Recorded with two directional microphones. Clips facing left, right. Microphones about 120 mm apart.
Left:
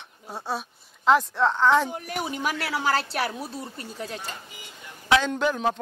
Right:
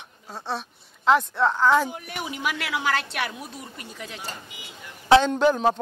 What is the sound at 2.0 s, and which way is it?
A woman's voice, 40° left (ahead or behind).